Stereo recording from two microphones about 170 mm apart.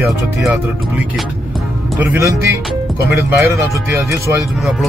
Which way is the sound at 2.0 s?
15° right (ahead or behind).